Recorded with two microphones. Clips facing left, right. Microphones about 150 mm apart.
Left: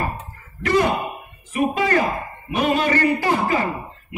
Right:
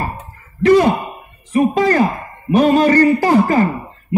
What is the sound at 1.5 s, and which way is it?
Speech, 35° right (ahead or behind).